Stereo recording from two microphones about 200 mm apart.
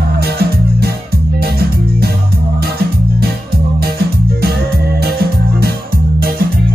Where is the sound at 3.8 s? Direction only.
55° right (ahead or behind).